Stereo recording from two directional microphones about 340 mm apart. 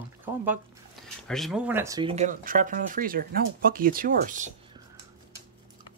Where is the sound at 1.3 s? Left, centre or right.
Centre; by 4.8 s right.